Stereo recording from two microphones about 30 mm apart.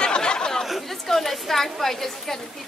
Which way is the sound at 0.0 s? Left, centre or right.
Left.